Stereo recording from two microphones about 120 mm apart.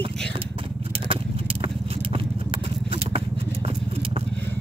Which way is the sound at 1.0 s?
50° right (ahead or behind).